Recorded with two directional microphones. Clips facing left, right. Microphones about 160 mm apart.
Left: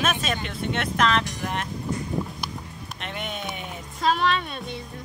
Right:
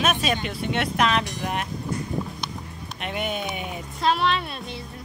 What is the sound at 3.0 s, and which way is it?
Speech, 10° right (ahead or behind).